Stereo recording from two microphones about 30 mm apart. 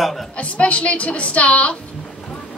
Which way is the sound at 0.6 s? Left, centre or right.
Left.